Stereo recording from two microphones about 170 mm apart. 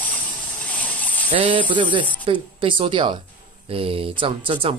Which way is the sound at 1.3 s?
30° right (ahead or behind).